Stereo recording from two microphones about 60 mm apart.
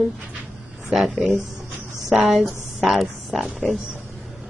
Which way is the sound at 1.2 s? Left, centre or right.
Right.